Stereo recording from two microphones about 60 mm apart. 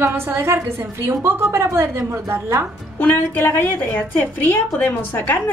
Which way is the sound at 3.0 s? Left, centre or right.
Left.